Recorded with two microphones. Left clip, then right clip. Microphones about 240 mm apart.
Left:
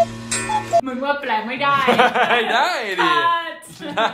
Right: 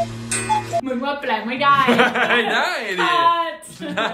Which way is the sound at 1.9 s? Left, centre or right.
Left.